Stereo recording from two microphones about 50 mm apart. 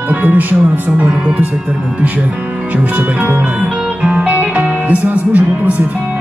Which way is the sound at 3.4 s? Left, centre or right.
Right.